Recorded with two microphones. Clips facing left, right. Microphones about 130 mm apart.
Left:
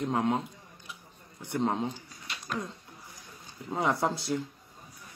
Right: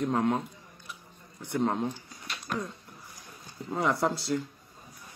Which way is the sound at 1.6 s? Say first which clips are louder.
Right 1 dB; 15° left (ahead or behind).